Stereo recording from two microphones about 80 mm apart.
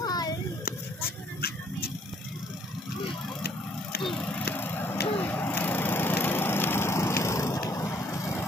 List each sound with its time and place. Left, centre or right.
0.0 s child singing: left
4.0 s vehicle: centre
4.3 s vehicle: left
5.1 s a sound: left
7.7 s vehicle: left